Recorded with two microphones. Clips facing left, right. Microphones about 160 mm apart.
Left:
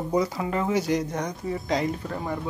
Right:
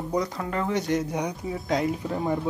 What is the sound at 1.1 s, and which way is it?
Speech, 10° right (ahead or behind).